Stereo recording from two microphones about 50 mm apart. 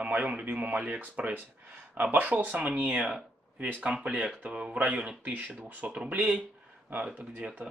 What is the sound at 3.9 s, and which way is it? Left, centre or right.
Speech, centre.